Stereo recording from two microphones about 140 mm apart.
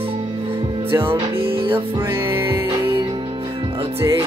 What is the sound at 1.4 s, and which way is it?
Music, 40° right (ahead or behind).